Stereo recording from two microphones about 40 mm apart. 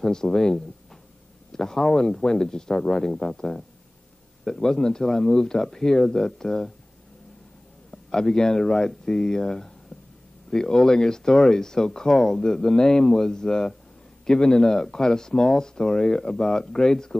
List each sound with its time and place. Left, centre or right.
0.0 s speech: centre
4.5 s speech: centre
7.9 s speech: centre